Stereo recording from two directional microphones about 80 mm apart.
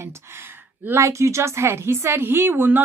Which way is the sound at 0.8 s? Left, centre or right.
Right.